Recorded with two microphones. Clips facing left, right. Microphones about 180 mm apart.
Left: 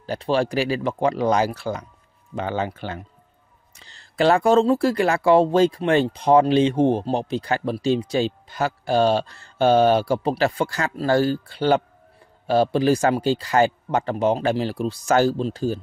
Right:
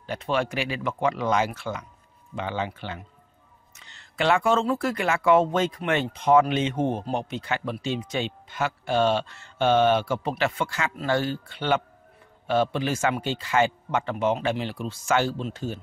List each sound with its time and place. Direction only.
0.0 s speech: 35° left (ahead or behind)